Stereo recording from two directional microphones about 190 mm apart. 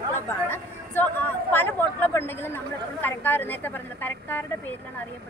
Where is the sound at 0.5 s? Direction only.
10° left (ahead or behind).